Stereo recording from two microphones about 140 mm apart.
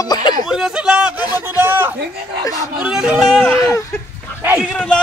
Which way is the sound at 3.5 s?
20° left (ahead or behind).